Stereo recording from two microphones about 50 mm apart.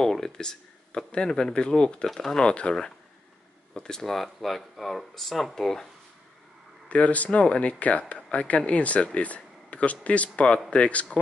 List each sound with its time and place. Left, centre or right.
0.0 s speech: centre
2.0 s speech: centre
3.7 s speech: centre
6.9 s speech: left